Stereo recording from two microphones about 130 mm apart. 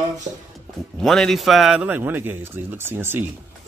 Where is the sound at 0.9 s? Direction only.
Centre (ahead or behind); by 3.3 s 15° right (ahead or behind).